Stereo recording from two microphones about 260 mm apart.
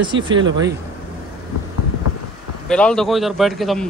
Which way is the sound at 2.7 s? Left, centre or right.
Centre.